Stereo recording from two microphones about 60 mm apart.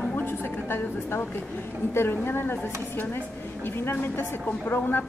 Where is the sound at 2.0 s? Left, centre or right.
Left.